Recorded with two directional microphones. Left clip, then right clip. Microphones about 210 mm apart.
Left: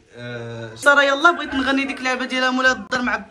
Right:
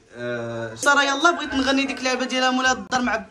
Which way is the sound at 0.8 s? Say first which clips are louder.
Left 4 dB; 15° right (ahead or behind).